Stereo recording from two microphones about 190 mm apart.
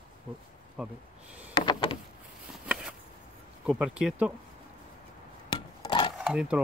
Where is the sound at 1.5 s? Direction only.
25° left (ahead or behind).